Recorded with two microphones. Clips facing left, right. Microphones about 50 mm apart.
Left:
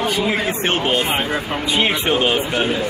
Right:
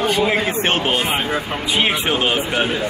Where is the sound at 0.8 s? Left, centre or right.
Centre.